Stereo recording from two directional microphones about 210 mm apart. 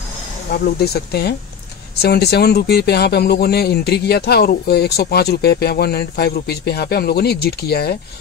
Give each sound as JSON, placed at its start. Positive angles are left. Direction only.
{"t": 0.5, "sound": "speech", "side_deg": 50}